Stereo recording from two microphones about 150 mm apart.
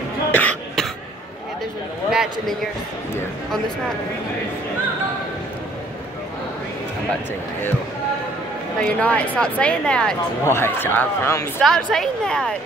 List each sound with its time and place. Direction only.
0.3 s cough: 10° left (ahead or behind)
2.0 s a man's voice: centre (ahead or behind)
8.7 s speech: 5° left (ahead or behind)
11.6 s a woman's voice: centre (ahead or behind)